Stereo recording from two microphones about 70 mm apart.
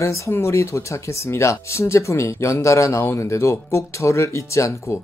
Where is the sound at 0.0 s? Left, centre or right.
Left.